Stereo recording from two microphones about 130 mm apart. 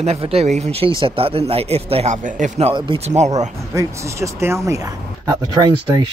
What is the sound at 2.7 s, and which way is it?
Speech, 40° right (ahead or behind).